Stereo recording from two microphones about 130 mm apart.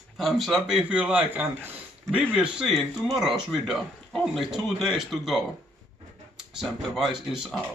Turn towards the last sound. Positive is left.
turn(degrees=-5)  # may be behind; listen again after turning